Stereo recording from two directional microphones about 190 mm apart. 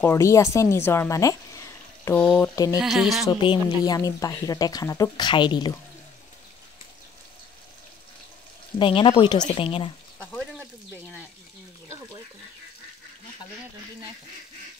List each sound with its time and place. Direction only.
0.0 s speech: 15° left (ahead or behind); by 3.3 s centre (ahead or behind)
3.3 s speech: 20° left (ahead or behind)
8.7 s speech: 25° left (ahead or behind)
10.1 s frying: 5° right (ahead or behind)